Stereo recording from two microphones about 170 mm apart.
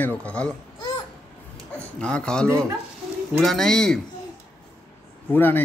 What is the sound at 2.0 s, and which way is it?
Speech, 5° left (ahead or behind).